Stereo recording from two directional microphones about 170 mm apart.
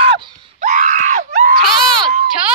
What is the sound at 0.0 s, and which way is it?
Screaming, 30° right (ahead or behind).